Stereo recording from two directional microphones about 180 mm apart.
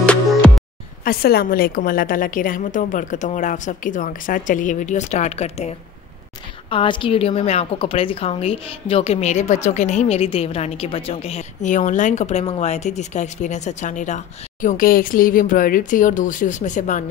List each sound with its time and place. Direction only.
0.0 s music: 5° left (ahead or behind)
1.0 s a woman's voice: 55° left (ahead or behind)